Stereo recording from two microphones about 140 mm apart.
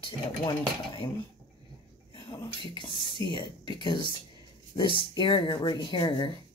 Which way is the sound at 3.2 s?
20° left (ahead or behind).